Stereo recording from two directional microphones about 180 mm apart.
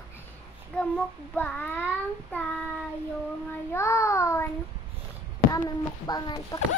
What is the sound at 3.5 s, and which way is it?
Child singing, 15° left (ahead or behind).